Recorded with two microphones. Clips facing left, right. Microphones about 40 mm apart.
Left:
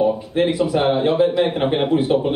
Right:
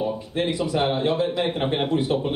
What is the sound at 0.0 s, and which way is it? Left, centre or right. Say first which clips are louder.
A man's voice: left 7 dB; centre.